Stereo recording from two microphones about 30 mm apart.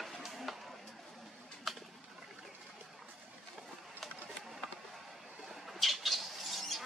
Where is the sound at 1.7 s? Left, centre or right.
Centre.